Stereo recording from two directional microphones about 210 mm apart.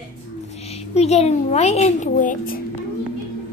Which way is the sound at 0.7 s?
30° left (ahead or behind).